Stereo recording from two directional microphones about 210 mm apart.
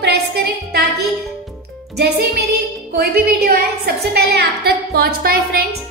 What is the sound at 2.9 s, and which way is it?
A woman's voice, 50° right (ahead or behind).